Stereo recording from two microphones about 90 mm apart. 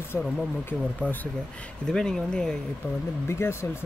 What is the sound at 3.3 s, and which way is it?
Speech, 30° left (ahead or behind).